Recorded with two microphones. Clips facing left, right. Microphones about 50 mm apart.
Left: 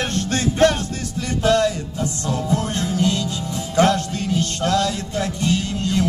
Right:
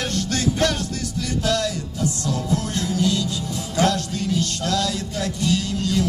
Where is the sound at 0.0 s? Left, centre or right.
Left.